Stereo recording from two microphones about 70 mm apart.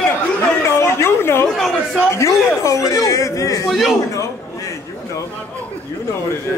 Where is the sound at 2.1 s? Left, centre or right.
Left.